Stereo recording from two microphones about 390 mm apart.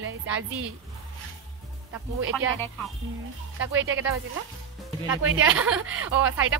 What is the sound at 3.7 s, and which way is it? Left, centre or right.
Speech, right.